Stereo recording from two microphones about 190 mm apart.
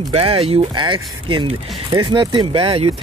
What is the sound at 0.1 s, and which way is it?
Speech, 30° right (ahead or behind).